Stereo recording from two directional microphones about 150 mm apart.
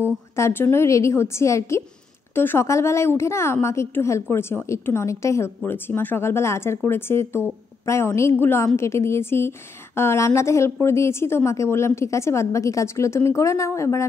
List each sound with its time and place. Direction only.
0.0 s a woman's voice: 15° left (ahead or behind)